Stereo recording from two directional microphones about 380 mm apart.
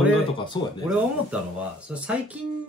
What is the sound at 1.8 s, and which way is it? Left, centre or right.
Speech, centre.